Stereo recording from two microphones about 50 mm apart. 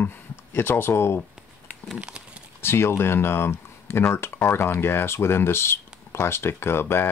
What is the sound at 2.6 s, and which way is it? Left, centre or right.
Speech, left.